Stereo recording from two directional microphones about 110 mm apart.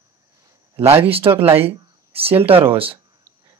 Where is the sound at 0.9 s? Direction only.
60° right (ahead or behind).